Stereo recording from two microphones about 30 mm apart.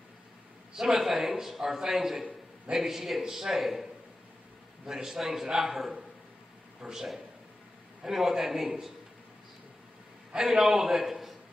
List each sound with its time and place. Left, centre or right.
0.9 s a man's voice: centre
4.8 s a man's voice: centre
10.3 s a man's voice: right
10.6 s a man's voice: centre